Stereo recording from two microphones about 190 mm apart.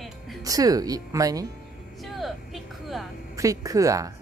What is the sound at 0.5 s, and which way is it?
Speech, 20° right (ahead or behind).